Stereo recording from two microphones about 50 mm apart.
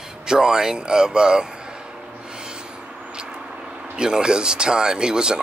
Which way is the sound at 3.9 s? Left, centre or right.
Centre.